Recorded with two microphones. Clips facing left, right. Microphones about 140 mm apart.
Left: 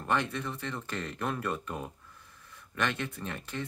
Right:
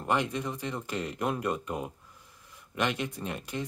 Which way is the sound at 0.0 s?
15° right (ahead or behind).